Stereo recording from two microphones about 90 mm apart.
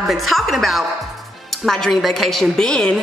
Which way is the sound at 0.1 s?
Centre (ahead or behind).